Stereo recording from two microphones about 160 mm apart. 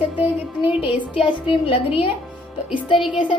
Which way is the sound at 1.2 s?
35° left (ahead or behind).